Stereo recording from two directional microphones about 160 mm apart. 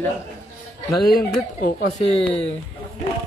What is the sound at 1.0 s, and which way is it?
Speech, 70° left (ahead or behind).